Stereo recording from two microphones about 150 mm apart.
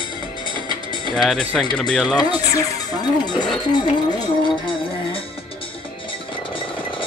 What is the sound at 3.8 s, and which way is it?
Music, 30° left (ahead or behind).